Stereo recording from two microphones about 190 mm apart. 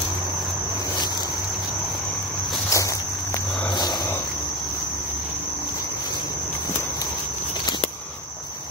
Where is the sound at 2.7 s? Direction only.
15° left (ahead or behind).